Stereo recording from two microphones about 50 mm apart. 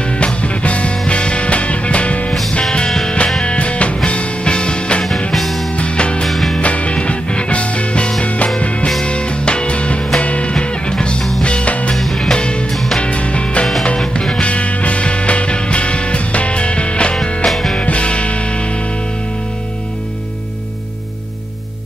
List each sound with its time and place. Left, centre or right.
0.0 s music: left
3.4 s music: left
5.3 s music: centre
5.8 s music: left
6.2 s music: centre
6.6 s music: left
11.9 s music: centre
12.3 s music: centre
12.7 s music: centre
13.0 s music: left
14.4 s music: left
17.5 s music: centre
17.7 s music: left